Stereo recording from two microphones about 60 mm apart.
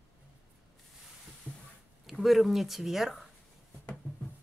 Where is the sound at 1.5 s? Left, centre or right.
Centre.